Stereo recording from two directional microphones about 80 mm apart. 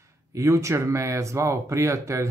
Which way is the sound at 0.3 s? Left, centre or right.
Right.